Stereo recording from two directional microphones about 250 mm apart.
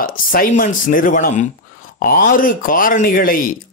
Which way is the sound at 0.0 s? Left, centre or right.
Left.